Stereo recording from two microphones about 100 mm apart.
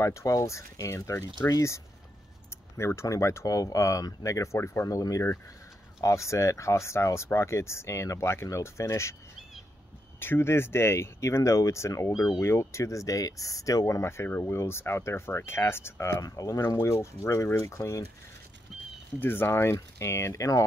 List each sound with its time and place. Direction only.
0.0 s speech: 30° left (ahead or behind)
10.2 s speech: 25° left (ahead or behind)
19.1 s speech: 20° left (ahead or behind)